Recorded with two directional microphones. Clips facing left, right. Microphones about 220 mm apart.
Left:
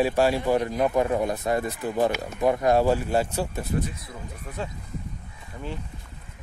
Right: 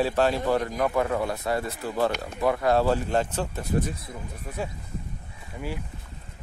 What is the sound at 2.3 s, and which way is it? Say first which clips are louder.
Speech: left 2 dB; 20° left (ahead or behind).